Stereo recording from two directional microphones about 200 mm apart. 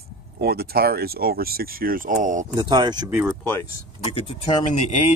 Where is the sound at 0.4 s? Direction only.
50° right (ahead or behind).